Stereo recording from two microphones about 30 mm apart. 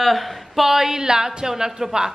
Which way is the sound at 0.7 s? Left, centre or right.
Centre.